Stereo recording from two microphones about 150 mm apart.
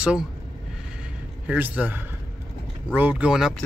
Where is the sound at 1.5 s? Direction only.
10° right (ahead or behind).